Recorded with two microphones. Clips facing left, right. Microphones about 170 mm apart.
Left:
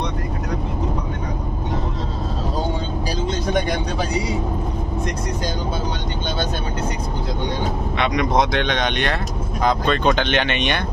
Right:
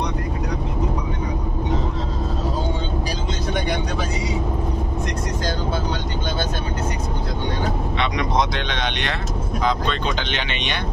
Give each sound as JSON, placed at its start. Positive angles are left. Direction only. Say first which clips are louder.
{"t": 8.0, "sound": "speech", "louder": "left 4 dB", "side_deg": 55}